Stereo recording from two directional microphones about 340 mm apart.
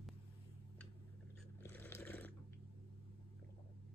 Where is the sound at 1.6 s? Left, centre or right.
Centre.